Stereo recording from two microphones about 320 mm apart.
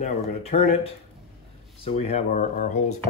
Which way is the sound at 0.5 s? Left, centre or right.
Centre.